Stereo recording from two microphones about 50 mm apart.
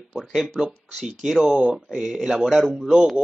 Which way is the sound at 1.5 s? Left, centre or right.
Centre.